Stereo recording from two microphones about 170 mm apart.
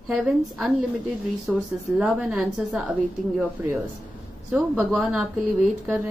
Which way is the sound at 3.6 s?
15° right (ahead or behind).